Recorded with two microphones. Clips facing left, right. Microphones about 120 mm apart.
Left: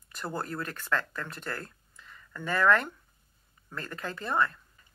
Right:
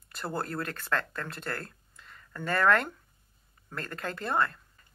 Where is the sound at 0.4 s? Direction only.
55° right (ahead or behind).